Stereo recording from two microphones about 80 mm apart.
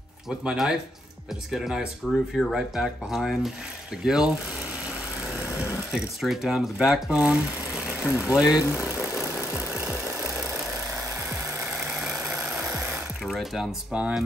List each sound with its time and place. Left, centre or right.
0.4 s speech: centre
5.6 s speech: centre
9.5 s music: centre
12.0 s vehicle: centre
13.2 s speech: centre
13.9 s speech: centre